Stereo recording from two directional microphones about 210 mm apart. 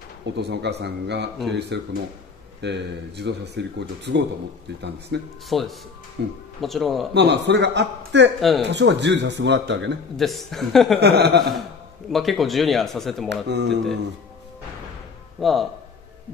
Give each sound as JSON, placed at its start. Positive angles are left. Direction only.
{"t": 0.2, "sound": "a man's voice", "side_deg": -55}
{"t": 5.5, "sound": "speech", "side_deg": 0}
{"t": 6.2, "sound": "speech", "side_deg": -55}
{"t": 6.6, "sound": "speech", "side_deg": 0}
{"t": 7.2, "sound": "speech", "side_deg": -55}
{"t": 8.4, "sound": "speech", "side_deg": 0}
{"t": 8.6, "sound": "speech", "side_deg": -55}
{"t": 10.1, "sound": "speech", "side_deg": 0}
{"t": 11.0, "sound": "a man's voice", "side_deg": -50}
{"t": 12.1, "sound": "speech", "side_deg": 0}
{"t": 13.3, "sound": "a man's voice", "side_deg": -50}
{"t": 15.4, "sound": "speech", "side_deg": 0}